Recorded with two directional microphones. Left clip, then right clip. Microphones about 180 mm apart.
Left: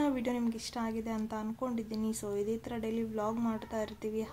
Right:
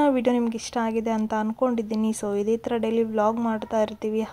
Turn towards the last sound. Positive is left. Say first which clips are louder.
# right 11 dB
turn(degrees=-35)  # may be behind; listen again after turning